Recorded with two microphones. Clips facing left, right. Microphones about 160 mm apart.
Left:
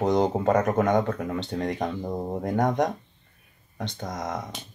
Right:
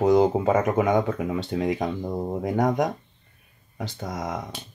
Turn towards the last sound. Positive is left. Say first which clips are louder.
# right 1 dB
turn(degrees=-5)  # may be behind; listen again after turning